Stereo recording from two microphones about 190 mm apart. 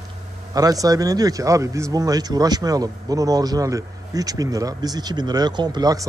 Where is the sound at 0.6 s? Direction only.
20° right (ahead or behind).